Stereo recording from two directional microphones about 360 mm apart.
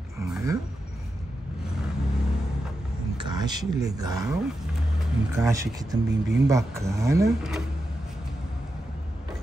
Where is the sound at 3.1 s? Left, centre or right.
Centre.